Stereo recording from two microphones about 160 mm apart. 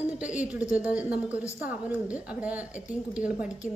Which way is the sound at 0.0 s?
10° right (ahead or behind).